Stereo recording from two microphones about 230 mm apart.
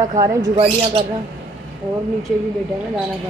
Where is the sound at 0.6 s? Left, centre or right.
Right.